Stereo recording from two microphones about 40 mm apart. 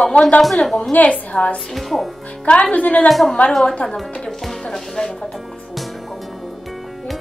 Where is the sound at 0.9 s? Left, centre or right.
Left.